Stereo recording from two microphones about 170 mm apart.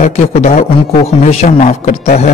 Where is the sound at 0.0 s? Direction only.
45° left (ahead or behind).